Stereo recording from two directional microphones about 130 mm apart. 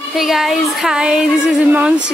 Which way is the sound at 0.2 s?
Centre (ahead or behind).